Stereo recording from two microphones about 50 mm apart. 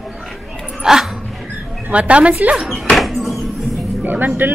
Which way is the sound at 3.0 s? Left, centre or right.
Centre.